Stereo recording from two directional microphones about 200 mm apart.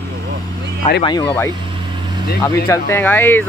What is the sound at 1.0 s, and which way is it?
Speech, 25° left (ahead or behind).